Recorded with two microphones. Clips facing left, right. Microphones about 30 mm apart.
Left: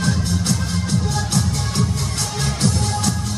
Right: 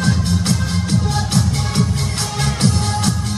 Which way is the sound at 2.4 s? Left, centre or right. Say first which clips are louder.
Right 3 dB; right.